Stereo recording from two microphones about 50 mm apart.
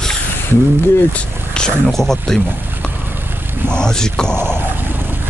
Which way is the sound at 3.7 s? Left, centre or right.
Centre.